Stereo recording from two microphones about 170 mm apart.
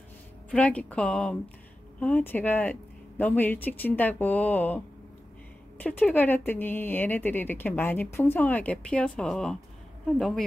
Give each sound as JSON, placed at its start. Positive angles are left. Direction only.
{"t": 0.5, "sound": "speech", "side_deg": 5}